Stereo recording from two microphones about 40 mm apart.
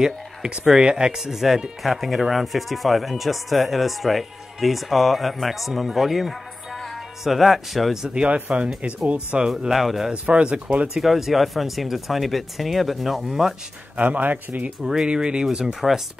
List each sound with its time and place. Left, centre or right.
0.0 s speech: centre
1.1 s speech: centre
5.9 s music: centre
7.2 s speech: centre
8.1 s speech: right
9.7 s speech: centre
10.3 s speech: right
11.0 s speech: centre
13.9 s speech: right
15.0 s speech: right
15.4 s speech: centre